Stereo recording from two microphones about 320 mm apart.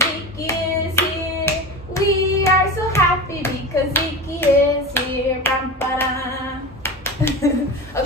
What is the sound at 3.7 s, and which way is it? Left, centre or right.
Clapping, centre.